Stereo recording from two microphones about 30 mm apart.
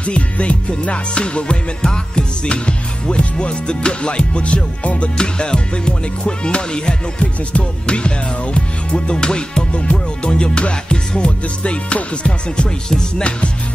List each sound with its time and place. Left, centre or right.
0.0 s music: left
1.8 s music: left
2.4 s music: left
5.1 s music: left
9.7 s music: left